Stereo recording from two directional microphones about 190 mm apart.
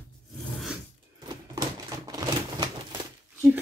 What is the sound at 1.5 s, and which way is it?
Typewriter, 20° right (ahead or behind).